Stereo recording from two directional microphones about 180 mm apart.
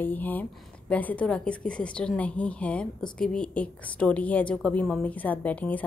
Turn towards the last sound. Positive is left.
turn(degrees=10)  # may be behind; listen again after turning